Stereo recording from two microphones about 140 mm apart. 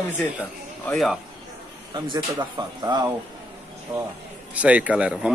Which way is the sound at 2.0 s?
35° right (ahead or behind).